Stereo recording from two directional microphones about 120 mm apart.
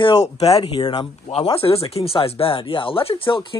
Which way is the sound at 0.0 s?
55° left (ahead or behind).